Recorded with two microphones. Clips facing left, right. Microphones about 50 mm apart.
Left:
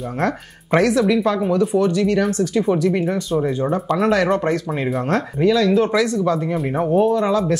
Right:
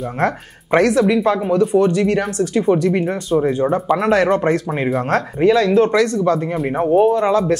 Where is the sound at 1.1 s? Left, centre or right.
Right.